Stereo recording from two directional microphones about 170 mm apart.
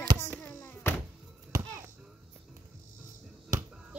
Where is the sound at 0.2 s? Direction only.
10° left (ahead or behind).